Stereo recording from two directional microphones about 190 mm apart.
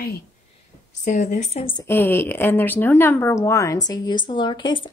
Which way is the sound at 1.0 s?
45° left (ahead or behind).